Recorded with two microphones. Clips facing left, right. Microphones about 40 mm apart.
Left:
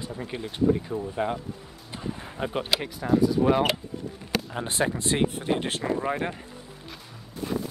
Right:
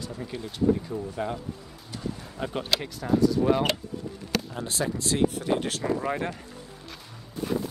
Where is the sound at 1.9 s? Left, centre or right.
Left.